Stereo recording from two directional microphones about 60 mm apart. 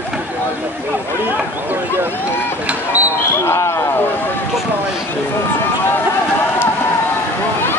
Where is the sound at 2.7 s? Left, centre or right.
Right.